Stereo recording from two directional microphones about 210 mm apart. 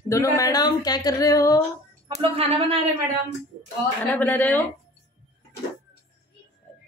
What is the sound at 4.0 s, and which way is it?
Speech, 10° left (ahead or behind).